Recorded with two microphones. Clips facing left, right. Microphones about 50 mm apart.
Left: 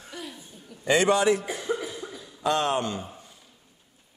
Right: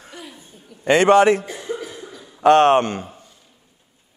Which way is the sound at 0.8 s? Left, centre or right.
Right.